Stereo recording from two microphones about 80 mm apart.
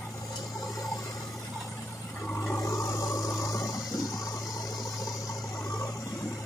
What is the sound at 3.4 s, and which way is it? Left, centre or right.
Toilet flush, left.